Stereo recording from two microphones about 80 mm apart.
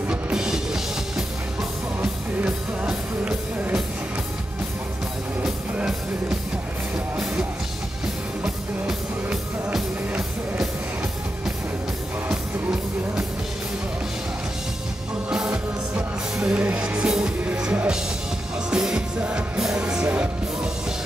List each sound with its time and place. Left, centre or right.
0.1 s music: centre
2.0 s music: centre
8.8 s music: centre
15.2 s music: centre